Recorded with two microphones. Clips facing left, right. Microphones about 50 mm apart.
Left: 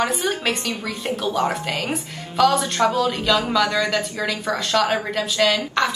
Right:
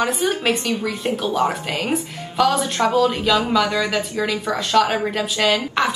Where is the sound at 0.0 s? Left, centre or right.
Centre.